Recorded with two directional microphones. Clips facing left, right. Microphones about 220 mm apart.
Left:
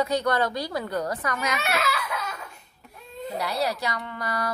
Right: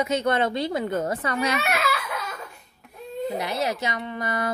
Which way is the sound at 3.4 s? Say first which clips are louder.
Left 3 dB; 20° right (ahead or behind).